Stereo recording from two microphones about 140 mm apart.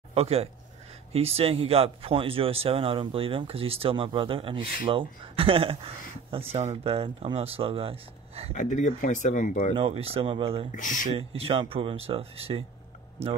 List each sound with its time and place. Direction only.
0.1 s speech: 45° right (ahead or behind)
8.5 s speech: 60° left (ahead or behind)
9.8 s speech: 40° right (ahead or behind)
10.7 s speech: 70° left (ahead or behind)
11.1 s speech: 40° right (ahead or behind)